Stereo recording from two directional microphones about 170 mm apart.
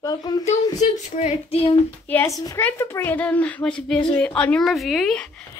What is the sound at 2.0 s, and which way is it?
A woman's voice, 15° left (ahead or behind).